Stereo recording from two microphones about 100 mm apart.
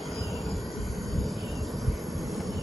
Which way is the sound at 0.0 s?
Centre (ahead or behind).